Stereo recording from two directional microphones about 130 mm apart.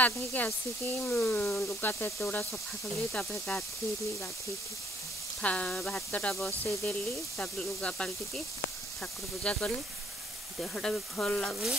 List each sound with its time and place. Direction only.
0.0 s speech: 15° left (ahead or behind)
3.1 s speech: 5° left (ahead or behind)
5.4 s speech: 10° left (ahead or behind)
9.4 s speech: 10° left (ahead or behind)